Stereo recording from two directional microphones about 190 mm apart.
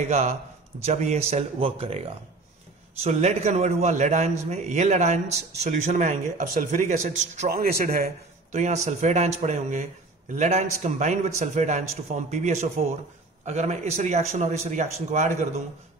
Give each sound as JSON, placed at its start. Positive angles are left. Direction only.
{"t": 0.0, "sound": "speech", "side_deg": -35}